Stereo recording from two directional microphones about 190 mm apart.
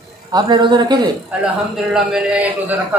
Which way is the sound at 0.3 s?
25° right (ahead or behind).